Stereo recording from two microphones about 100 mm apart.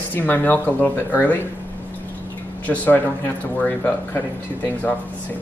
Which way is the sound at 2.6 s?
15° left (ahead or behind).